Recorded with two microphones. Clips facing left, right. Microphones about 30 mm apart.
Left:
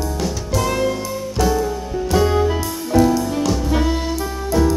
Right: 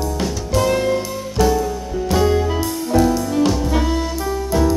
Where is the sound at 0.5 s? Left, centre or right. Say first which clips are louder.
Right 3 dB; centre.